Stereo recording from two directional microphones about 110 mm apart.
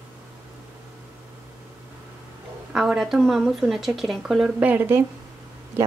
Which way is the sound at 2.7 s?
5° right (ahead or behind).